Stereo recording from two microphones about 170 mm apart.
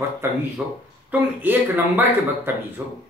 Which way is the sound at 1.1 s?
10° right (ahead or behind).